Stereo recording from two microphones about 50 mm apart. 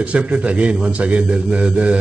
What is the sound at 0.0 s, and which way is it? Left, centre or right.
A man's voice, right.